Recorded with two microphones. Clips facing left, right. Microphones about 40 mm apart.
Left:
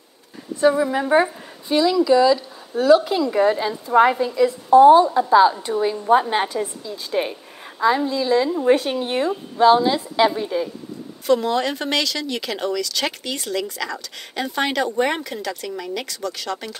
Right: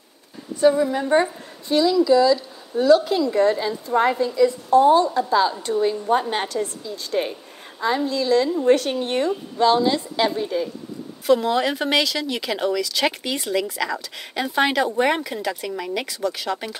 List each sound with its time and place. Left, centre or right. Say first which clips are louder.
0.6 s a woman's voice: even; centre